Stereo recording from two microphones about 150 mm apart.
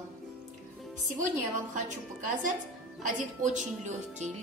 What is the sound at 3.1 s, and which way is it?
A woman's voice, 55° right (ahead or behind).